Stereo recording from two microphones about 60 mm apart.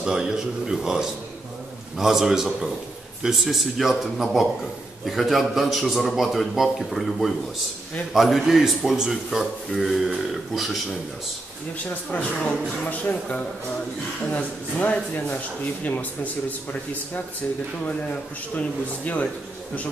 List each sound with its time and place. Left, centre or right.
0.0 s a man's voice: centre
12.1 s speech: left
19.1 s speech: left